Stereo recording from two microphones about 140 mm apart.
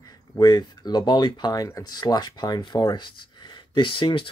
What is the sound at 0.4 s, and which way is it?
Speech, 30° left (ahead or behind).